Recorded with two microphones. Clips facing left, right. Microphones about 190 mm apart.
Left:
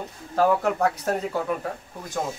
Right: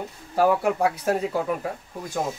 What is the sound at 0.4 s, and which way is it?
Speech, 10° right (ahead or behind).